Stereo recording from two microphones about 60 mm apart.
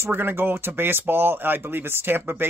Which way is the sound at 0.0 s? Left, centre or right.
Right.